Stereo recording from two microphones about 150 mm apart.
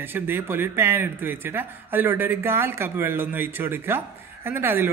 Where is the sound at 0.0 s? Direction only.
15° right (ahead or behind).